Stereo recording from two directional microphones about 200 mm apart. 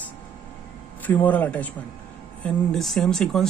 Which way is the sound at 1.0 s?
10° left (ahead or behind).